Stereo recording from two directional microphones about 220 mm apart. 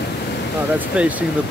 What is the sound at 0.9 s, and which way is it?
Speech, 5° right (ahead or behind).